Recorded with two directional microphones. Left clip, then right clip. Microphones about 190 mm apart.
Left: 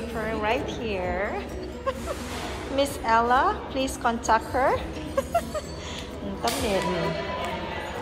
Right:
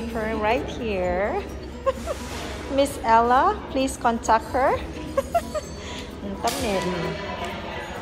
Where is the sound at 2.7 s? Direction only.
10° left (ahead or behind).